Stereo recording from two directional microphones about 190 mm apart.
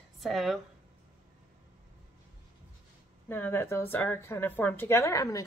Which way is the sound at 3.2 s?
10° left (ahead or behind).